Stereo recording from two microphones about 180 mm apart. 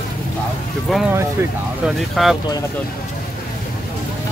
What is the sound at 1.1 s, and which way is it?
Speech, 15° right (ahead or behind).